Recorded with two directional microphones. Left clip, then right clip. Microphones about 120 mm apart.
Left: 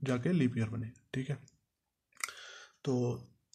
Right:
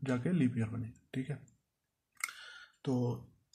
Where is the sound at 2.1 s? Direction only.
15° left (ahead or behind).